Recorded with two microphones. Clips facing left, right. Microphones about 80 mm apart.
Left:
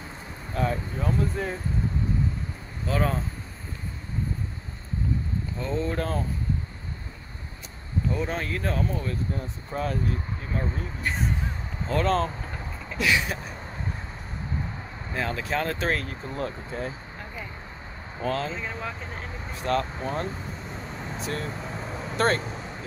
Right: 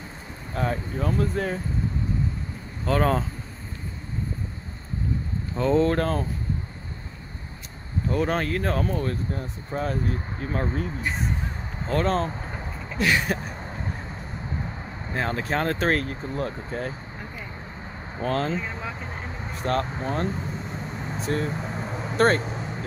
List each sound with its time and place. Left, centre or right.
0.6 s speech: right
2.8 s speech: right
5.6 s speech: right
5.9 s speech: right
8.1 s speech: right
11.0 s speech: centre
11.9 s speech: right
15.1 s speech: right
18.2 s speech: right
18.6 s speech: centre
19.5 s speech: right
21.5 s vehicle: centre
22.1 s speech: right